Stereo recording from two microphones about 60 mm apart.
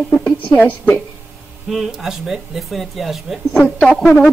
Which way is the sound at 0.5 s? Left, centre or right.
Left.